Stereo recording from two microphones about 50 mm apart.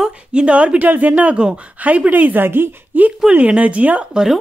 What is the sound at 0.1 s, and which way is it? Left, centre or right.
A woman's voice, right.